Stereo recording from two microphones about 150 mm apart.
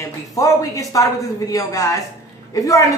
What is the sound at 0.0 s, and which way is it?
A woman's voice, 20° left (ahead or behind).